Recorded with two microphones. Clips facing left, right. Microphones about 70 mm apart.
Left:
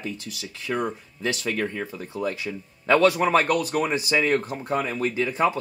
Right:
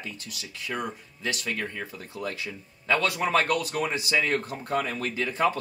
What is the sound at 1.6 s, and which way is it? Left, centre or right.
Speech, centre.